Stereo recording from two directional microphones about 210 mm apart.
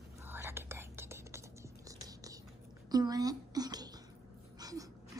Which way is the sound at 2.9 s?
20° right (ahead or behind).